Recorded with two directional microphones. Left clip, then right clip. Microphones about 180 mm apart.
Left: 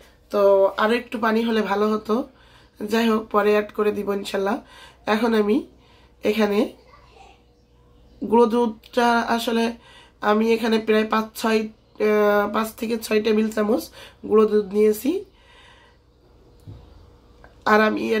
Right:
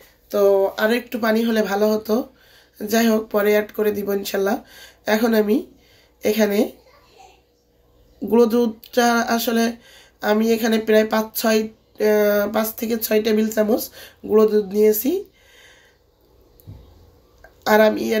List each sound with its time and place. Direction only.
0.3 s speech: 5° left (ahead or behind)
8.3 s speech: 5° left (ahead or behind)
17.6 s speech: 5° left (ahead or behind)